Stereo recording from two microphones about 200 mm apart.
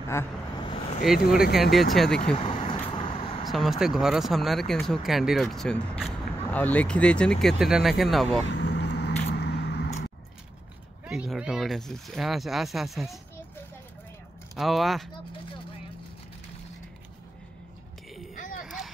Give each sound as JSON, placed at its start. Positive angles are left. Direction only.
{"t": 0.1, "sound": "vehicle", "side_deg": 15}
{"t": 1.1, "sound": "speech", "side_deg": 0}
{"t": 2.3, "sound": "vehicle", "side_deg": 25}
{"t": 3.4, "sound": "speech", "side_deg": 0}
{"t": 8.5, "sound": "vehicle", "side_deg": 60}
{"t": 11.1, "sound": "speech", "side_deg": -5}
{"t": 14.5, "sound": "speech", "side_deg": 0}